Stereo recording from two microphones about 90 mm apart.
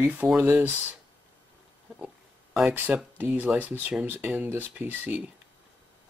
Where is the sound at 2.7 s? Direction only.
20° right (ahead or behind).